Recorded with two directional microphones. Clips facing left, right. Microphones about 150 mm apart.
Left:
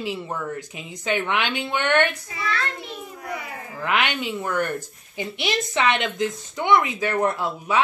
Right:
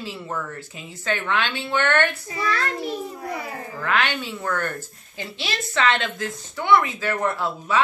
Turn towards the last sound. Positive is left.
turn(degrees=15)  # may be behind; listen again after turning